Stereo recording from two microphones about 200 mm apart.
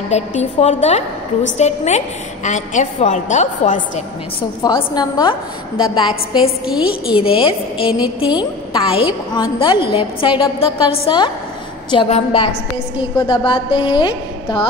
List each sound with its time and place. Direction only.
0.1 s a woman's voice: 35° left (ahead or behind)
4.6 s a woman's voice: 20° left (ahead or behind)
6.6 s a woman's voice: 5° right (ahead or behind)
7.2 s a woman's voice: 25° left (ahead or behind)